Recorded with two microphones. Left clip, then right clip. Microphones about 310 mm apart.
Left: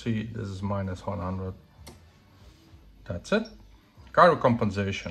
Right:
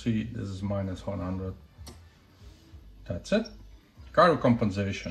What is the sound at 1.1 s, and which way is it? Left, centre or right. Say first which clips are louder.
Speech: left 3 dB; left.